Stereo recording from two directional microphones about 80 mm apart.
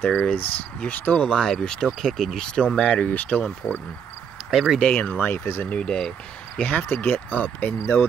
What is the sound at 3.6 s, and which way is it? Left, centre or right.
Speech, left.